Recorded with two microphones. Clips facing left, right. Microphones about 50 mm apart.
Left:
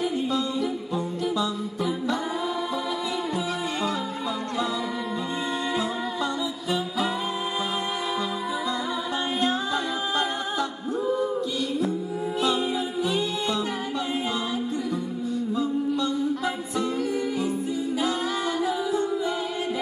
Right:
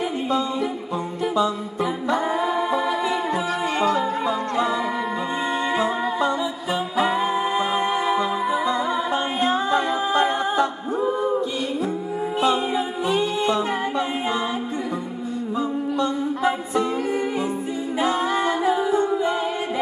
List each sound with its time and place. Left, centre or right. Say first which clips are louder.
2.0 s music: right 5 dB; right
12.4 s music: right 4 dB; right
16.0 s music: right 4 dB; right
17.9 s a capella: right 8 dB; right